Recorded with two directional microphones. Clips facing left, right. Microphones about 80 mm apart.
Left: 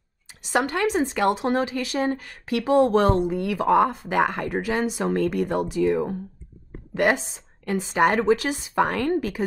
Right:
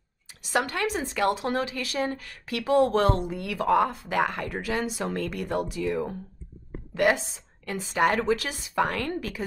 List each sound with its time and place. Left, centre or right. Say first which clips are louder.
0.5 s speech: left 4 dB; left